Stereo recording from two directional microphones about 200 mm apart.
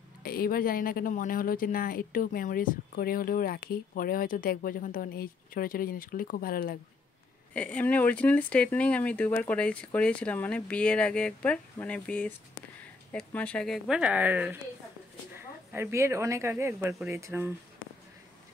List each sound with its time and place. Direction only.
0.2 s speech: 50° left (ahead or behind)
7.5 s speech: 5° left (ahead or behind); by 17.5 s 15° right (ahead or behind)